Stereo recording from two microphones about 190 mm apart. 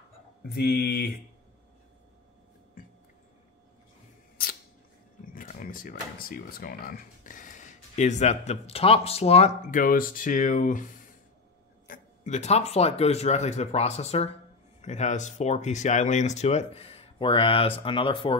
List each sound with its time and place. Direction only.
0.6 s speech: 60° left (ahead or behind)
5.3 s speech: 45° left (ahead or behind)
11.9 s speech: 40° left (ahead or behind)